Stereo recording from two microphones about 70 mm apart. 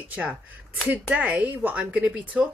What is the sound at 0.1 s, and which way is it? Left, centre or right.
Speech, centre.